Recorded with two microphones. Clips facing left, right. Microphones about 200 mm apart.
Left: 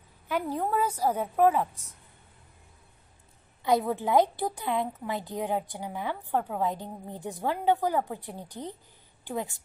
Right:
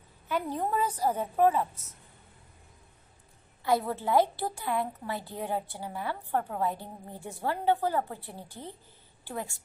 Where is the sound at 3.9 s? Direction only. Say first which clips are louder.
Left 2 dB; 15° left (ahead or behind).